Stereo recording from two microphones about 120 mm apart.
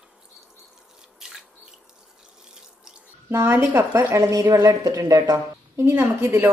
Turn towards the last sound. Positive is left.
turn(degrees=-20)  # may be behind; listen again after turning